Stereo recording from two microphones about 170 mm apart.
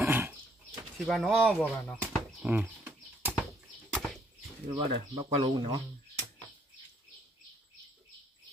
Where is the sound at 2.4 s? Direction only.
10° right (ahead or behind).